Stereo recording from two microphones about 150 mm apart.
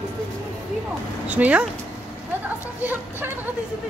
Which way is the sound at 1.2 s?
10° right (ahead or behind).